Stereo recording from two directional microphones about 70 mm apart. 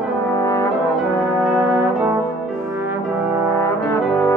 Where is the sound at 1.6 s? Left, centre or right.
Right.